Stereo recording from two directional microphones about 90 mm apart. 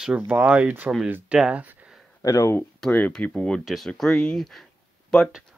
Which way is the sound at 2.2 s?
35° left (ahead or behind).